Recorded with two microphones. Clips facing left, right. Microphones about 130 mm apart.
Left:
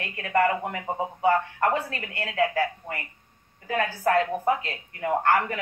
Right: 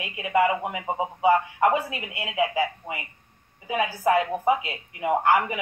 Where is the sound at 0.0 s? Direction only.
10° right (ahead or behind).